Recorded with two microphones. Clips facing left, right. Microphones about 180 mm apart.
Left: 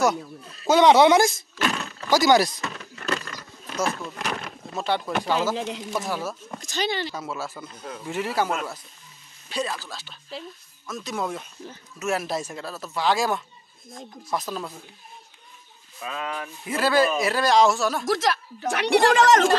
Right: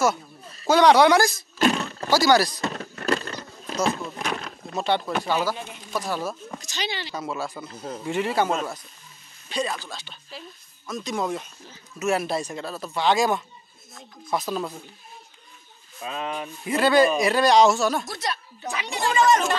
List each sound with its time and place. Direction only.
0.7 s speech: 20° left (ahead or behind)
2.6 s a sound: 45° right (ahead or behind)
3.2 s a sound: 30° right (ahead or behind)
4.0 s speech: centre (ahead or behind)
5.6 s a woman's voice: 90° left
5.9 s speech: 5° left (ahead or behind)
6.6 s speech: 50° left (ahead or behind)
7.2 s speech: 5° left (ahead or behind)
7.7 s speech: 30° right (ahead or behind)
8.0 s speech: 5° left (ahead or behind)
9.5 s speech: 5° left (ahead or behind)
16.0 s speech: 25° right (ahead or behind)
16.6 s speech: centre (ahead or behind)
18.0 s a woman's voice: 90° left